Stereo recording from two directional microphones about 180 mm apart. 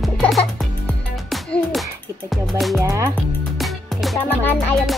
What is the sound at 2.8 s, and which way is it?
Speech, 15° right (ahead or behind).